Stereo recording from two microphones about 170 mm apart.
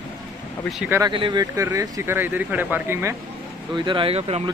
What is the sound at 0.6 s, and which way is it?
Speech, centre (ahead or behind).